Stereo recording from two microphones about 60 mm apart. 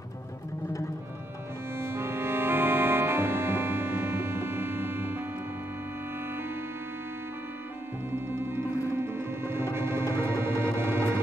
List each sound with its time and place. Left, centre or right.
1.8 s music: right
8.1 s music: right